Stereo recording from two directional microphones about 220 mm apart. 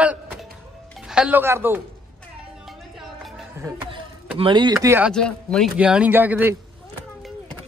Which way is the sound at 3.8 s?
25° right (ahead or behind).